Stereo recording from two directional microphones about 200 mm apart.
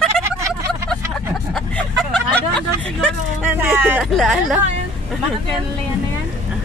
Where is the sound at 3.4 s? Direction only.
10° right (ahead or behind).